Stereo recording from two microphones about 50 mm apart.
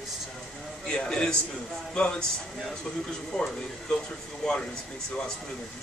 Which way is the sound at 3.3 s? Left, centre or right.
Centre.